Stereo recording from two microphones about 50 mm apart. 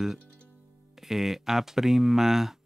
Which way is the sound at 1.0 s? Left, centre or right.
Centre.